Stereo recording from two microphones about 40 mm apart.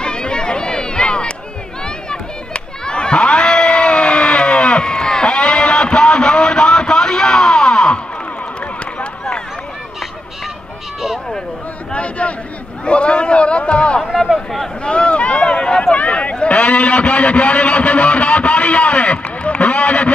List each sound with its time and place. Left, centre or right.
0.0 s chatter: left
2.0 s crowd: left
11.9 s a sound: left
14.1 s a sound: centre
14.8 s boat: left
16.0 s a man's voice: left